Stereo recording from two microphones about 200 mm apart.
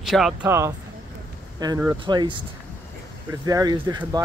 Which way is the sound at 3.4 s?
20° right (ahead or behind).